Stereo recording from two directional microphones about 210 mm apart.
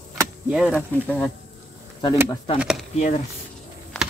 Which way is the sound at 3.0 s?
35° left (ahead or behind).